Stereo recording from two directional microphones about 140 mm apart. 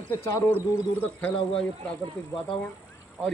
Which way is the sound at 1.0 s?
10° left (ahead or behind).